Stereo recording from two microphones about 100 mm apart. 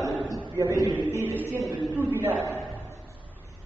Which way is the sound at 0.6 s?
30° right (ahead or behind).